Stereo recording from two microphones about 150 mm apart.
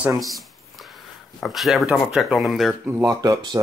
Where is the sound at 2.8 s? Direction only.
20° right (ahead or behind).